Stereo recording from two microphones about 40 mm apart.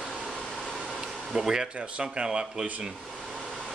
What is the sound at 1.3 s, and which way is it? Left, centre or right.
Speech, centre.